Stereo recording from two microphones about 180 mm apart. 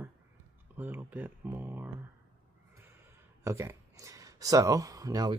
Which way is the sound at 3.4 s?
15° right (ahead or behind).